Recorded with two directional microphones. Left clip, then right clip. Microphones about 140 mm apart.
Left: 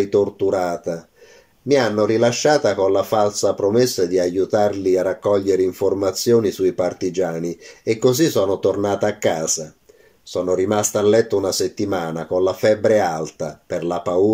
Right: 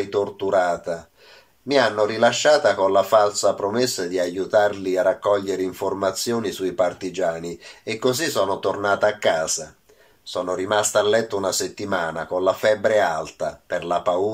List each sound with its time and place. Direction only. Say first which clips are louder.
0.1 s speech: left 3 dB; 45° left (ahead or behind)
1.7 s speech: left 2 dB; 45° left (ahead or behind)